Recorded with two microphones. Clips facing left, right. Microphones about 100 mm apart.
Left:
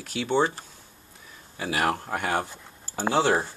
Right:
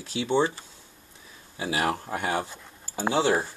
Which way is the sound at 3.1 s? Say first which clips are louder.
Left 1 dB; 40° left (ahead or behind).